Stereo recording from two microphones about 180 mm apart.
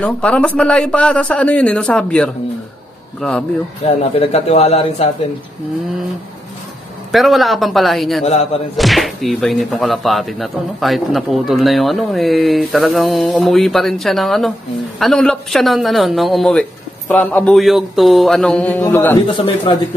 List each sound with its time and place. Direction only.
0.0 s speech: 5° left (ahead or behind)
3.8 s speech: 35° left (ahead or behind)
7.1 s speech: centre (ahead or behind)
19.2 s speech: 30° left (ahead or behind)